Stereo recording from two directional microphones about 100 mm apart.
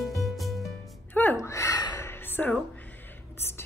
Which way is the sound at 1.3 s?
30° left (ahead or behind).